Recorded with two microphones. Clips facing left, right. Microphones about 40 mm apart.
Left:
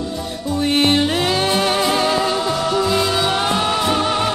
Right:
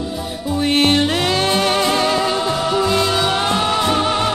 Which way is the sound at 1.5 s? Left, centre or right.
Centre.